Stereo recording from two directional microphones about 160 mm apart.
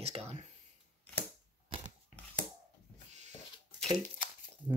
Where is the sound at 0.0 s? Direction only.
40° right (ahead or behind).